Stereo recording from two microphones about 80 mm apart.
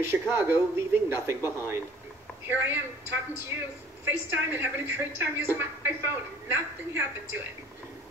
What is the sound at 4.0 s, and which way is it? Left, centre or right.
A woman's voice, right.